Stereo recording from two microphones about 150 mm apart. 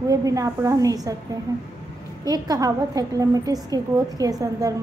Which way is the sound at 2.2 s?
25° right (ahead or behind).